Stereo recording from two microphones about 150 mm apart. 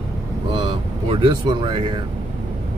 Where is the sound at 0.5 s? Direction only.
30° right (ahead or behind).